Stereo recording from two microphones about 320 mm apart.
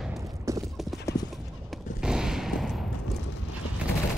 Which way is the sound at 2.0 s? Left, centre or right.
Centre.